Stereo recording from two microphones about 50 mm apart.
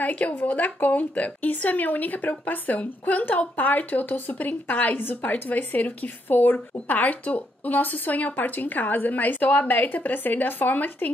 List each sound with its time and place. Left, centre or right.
0.0 s a woman's voice: left